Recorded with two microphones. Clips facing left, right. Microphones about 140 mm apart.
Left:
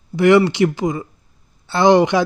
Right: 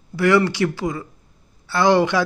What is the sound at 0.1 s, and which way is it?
Speech, 20° left (ahead or behind).